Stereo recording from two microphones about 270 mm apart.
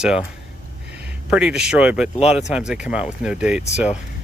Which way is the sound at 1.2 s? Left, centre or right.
Centre.